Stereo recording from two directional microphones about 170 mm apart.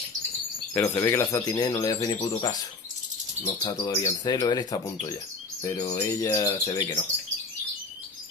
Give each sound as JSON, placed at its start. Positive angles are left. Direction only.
{"t": 0.7, "sound": "speech", "side_deg": 15}
{"t": 3.4, "sound": "speech", "side_deg": 20}